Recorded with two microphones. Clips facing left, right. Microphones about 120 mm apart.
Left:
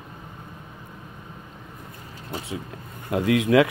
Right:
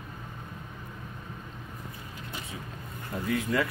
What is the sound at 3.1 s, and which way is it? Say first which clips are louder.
Speech: left 9 dB; 90° left.